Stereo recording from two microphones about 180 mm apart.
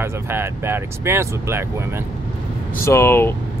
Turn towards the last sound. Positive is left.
turn(degrees=15)  # may be behind; listen again after turning